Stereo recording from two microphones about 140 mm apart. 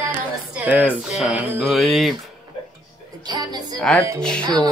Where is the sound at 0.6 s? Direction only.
10° right (ahead or behind).